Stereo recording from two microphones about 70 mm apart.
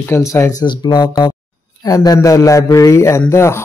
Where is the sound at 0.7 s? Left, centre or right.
Left.